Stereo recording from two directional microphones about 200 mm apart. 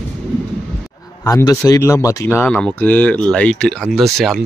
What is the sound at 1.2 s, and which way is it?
Speech, 15° left (ahead or behind).